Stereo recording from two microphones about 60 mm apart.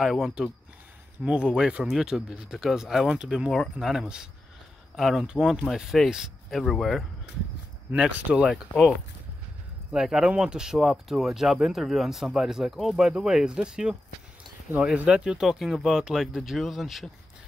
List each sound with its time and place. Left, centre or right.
0.0 s speech: centre
1.2 s speech: centre
8.1 s speech: right
8.5 s speech: centre
9.9 s speech: centre
15.0 s speech: centre
15.4 s speech: centre